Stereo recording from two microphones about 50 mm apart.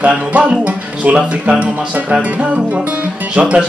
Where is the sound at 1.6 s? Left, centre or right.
Right.